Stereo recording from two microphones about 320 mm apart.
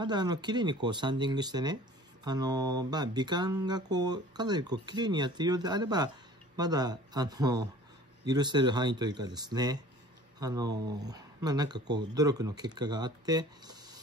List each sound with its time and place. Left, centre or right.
0.0 s speech: centre